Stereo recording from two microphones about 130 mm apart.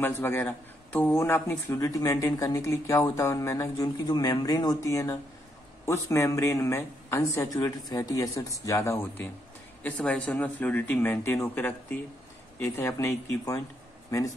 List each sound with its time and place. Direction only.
0.0 s a man's voice: 15° left (ahead or behind)